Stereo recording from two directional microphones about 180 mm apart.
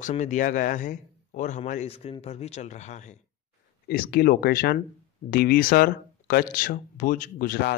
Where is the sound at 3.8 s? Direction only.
60° left (ahead or behind).